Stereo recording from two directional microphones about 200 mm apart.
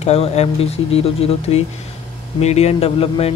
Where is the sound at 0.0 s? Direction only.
30° left (ahead or behind).